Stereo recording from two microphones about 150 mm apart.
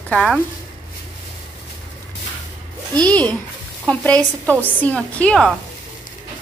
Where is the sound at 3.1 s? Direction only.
10° left (ahead or behind).